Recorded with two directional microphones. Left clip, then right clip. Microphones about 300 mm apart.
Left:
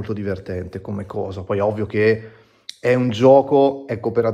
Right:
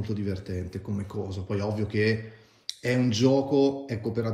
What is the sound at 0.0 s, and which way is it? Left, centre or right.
Speech, centre.